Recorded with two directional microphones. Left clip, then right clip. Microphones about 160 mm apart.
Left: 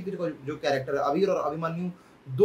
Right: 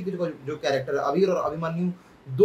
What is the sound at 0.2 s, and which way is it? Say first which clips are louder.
Speech: right 1 dB; 5° left (ahead or behind).